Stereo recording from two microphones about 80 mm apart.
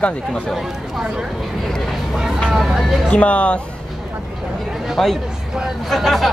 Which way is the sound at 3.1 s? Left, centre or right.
Centre.